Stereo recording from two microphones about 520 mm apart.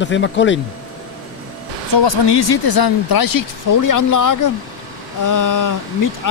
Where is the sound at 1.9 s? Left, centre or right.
Left.